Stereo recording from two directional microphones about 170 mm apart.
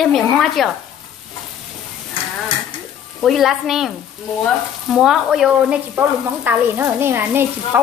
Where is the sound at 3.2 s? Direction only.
Centre (ahead or behind).